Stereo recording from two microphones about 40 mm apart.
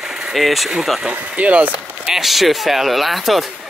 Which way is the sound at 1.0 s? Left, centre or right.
Right.